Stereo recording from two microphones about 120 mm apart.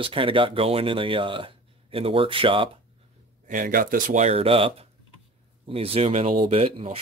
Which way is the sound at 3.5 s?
90° right.